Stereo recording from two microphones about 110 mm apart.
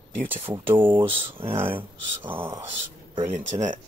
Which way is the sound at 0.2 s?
15° right (ahead or behind).